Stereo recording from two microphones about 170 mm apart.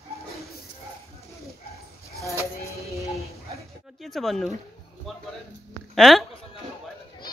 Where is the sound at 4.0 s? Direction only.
Centre (ahead or behind).